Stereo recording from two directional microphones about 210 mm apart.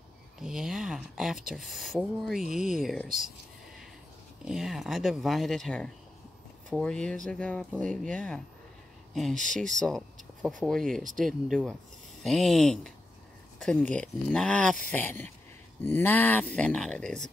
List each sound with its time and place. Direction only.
0.4 s speech: 5° right (ahead or behind)
4.5 s speech: centre (ahead or behind)
9.8 s speech: centre (ahead or behind)